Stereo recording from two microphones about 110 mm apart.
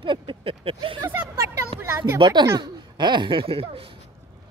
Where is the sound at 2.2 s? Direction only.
40° right (ahead or behind).